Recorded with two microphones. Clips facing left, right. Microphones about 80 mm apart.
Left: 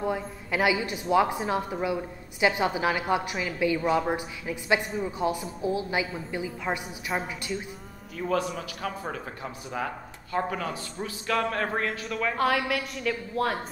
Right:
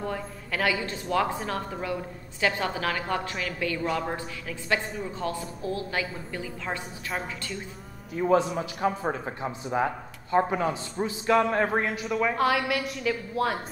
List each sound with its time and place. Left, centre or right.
0.0 s a woman's voice: centre
8.2 s a man's voice: right
12.4 s a woman's voice: centre